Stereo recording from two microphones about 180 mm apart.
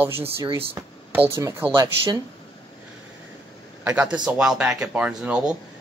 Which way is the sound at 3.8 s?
5° right (ahead or behind).